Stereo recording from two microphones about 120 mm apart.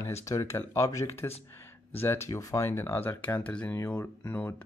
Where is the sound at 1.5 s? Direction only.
20° left (ahead or behind).